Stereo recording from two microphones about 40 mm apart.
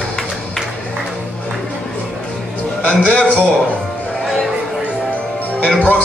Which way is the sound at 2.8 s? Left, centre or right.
Left.